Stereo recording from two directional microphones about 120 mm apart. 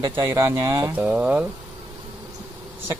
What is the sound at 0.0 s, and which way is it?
Speech, 20° right (ahead or behind).